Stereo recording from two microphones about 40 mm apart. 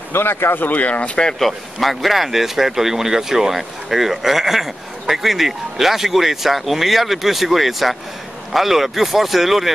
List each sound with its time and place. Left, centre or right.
0.1 s speech: left
0.6 s speech: left
1.4 s speech: centre